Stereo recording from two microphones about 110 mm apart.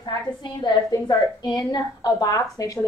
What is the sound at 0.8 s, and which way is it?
A woman's voice, 30° left (ahead or behind).